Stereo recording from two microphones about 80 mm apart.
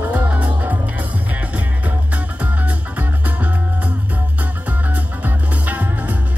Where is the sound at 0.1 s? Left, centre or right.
Centre.